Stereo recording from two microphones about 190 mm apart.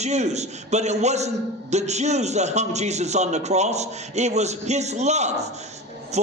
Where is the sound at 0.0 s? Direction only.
35° right (ahead or behind).